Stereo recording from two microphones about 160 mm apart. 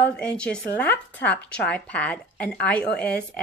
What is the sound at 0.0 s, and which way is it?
Speech, 5° left (ahead or behind).